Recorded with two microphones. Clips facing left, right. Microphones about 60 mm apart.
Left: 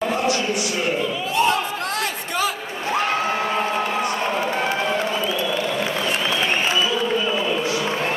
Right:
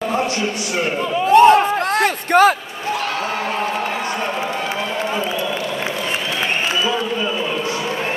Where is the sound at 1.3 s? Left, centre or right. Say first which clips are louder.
Right 11 dB; right.